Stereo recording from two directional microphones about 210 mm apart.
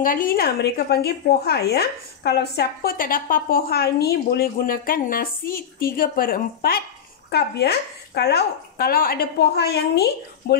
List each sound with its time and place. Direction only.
0.0 s a woman's voice: 40° left (ahead or behind)